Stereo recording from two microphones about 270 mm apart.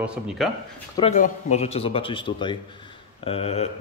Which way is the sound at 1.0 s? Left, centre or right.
Left.